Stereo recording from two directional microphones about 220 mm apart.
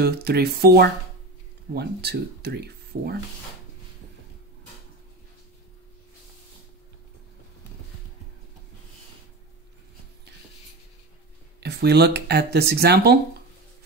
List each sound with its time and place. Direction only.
0.0 s speech: 45° right (ahead or behind)
11.6 s speech: 50° right (ahead or behind)